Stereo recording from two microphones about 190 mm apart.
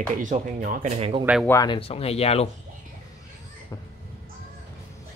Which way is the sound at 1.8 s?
30° left (ahead or behind).